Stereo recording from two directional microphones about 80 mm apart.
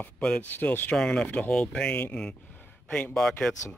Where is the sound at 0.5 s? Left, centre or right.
Left.